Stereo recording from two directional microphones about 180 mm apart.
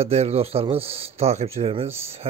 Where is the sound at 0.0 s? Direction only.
35° right (ahead or behind).